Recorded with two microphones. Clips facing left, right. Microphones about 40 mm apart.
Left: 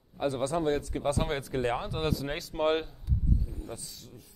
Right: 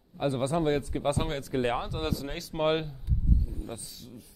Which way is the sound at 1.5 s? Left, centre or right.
Centre.